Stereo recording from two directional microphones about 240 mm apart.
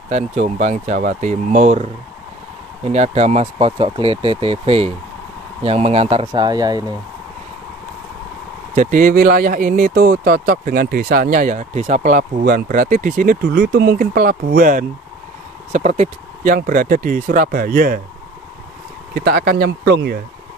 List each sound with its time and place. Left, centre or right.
0.1 s speech: right
8.7 s speech: right
19.1 s speech: right